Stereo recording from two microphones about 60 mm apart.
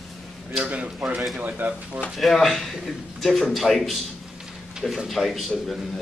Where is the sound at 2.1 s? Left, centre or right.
Centre.